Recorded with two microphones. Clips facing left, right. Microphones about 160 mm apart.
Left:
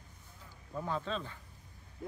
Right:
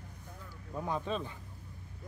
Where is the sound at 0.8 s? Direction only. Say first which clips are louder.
Right 2 dB; 15° right (ahead or behind).